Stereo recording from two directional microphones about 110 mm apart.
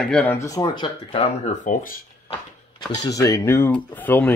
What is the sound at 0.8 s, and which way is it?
Speech, 50° left (ahead or behind).